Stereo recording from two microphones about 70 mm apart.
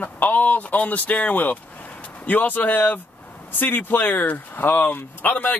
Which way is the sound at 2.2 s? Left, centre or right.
Left.